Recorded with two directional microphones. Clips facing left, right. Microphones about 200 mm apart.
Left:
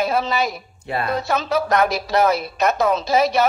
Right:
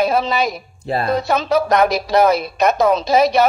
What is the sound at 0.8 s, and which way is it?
Speech, 35° right (ahead or behind).